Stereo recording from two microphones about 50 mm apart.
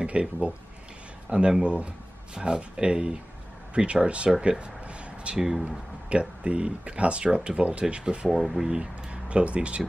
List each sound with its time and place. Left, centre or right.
0.0 s speech: right
1.6 s speech: right
5.4 s speech: centre
5.7 s speech: right
8.3 s speech: centre
8.6 s speech: centre